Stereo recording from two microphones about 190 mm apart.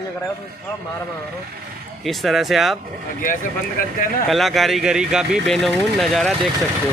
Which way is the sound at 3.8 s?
50° left (ahead or behind).